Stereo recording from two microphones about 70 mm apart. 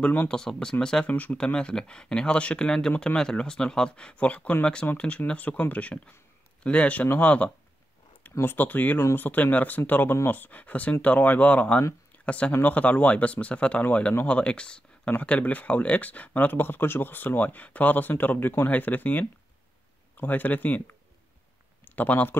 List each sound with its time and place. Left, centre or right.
0.3 s speech: centre
1.1 s speech: left
1.4 s speech: centre
2.9 s speech: left
3.2 s speech: centre; by 22.4 s left